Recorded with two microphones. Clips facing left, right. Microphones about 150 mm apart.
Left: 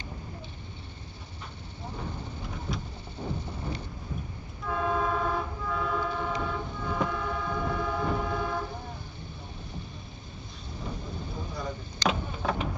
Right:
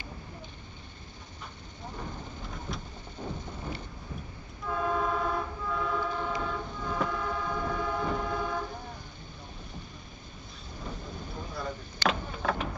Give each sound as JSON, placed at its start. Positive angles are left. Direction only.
{"t": 2.5, "sound": "vehicle", "side_deg": 5}
{"t": 3.3, "sound": "thunder", "side_deg": 15}
{"t": 4.6, "sound": "vehicle", "side_deg": 0}
{"t": 10.8, "sound": "vehicle", "side_deg": 5}